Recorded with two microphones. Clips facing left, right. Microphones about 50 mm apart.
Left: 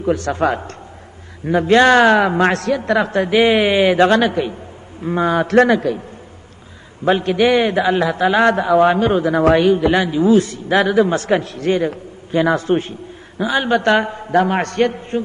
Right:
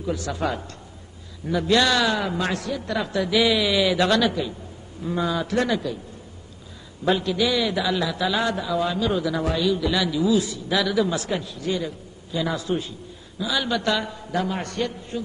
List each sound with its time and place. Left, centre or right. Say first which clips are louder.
0.0 s a man's voice: left 9 dB; left
7.1 s a man's voice: left 7 dB; left
7.7 s a man's voice: left 8 dB; left